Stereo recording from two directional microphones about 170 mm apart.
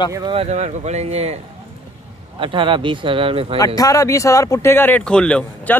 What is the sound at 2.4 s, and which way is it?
Speech, 30° right (ahead or behind).